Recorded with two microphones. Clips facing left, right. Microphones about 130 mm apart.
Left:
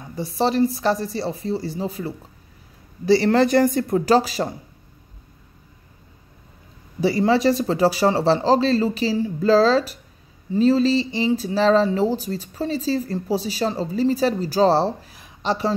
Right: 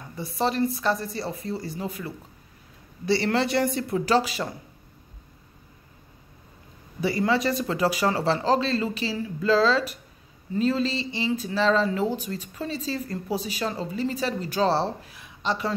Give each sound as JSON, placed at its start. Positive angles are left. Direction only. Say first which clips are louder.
{"t": 0.1, "sound": "speech", "louder": "left 5 dB", "side_deg": 35}
{"t": 7.0, "sound": "speech", "louder": "left 5 dB", "side_deg": 35}